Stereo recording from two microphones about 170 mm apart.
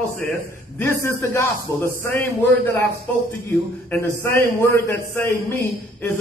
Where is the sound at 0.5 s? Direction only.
15° left (ahead or behind).